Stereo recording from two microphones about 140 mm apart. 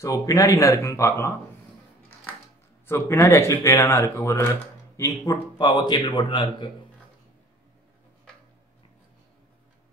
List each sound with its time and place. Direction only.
0.0 s speech: 25° left (ahead or behind)
2.9 s a man's voice: 20° left (ahead or behind); by 6.7 s 35° left (ahead or behind)